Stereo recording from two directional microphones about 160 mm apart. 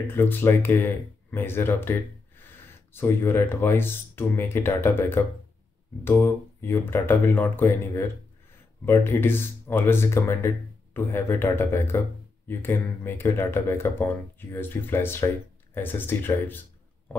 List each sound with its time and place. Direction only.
0.0 s speech: 15° left (ahead or behind)